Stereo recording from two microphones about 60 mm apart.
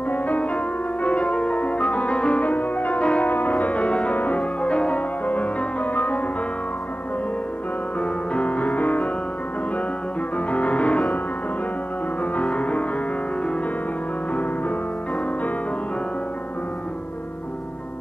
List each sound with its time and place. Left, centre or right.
0.1 s music: left
8.0 s music: left
10.3 s music: left
12.4 s music: left